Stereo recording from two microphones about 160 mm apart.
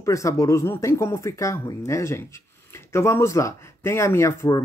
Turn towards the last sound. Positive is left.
turn(degrees=15)  # may be behind; listen again after turning